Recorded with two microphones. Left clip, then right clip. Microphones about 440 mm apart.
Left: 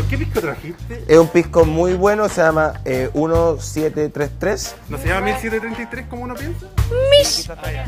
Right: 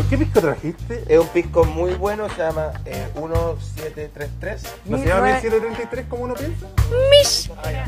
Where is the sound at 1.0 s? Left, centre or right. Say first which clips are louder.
Left 4 dB; left.